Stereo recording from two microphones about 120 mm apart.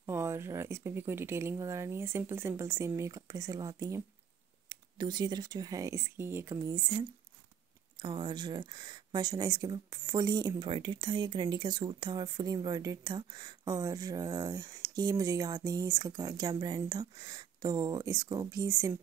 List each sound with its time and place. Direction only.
0.0 s speech: 20° right (ahead or behind)
8.0 s speech: 40° right (ahead or behind)